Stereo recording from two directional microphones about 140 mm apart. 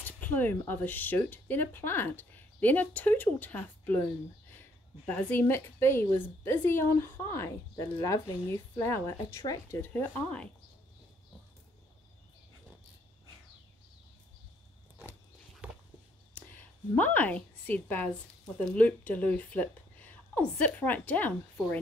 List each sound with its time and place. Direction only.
0.0 s a woman's voice: 15° left (ahead or behind)
5.0 s a woman's voice: 15° left (ahead or behind)
15.6 s a sound: 10° right (ahead or behind)
16.3 s a woman's voice: 10° left (ahead or behind)